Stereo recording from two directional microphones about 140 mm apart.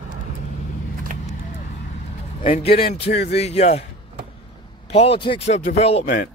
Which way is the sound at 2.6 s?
45° left (ahead or behind).